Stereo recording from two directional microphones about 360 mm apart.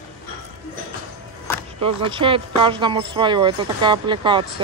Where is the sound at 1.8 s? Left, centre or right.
Centre.